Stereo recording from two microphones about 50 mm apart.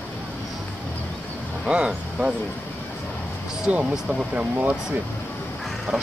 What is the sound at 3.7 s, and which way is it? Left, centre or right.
Speech, right.